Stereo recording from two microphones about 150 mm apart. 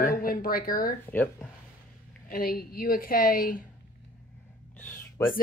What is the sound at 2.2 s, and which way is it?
A woman's voice, 75° left (ahead or behind).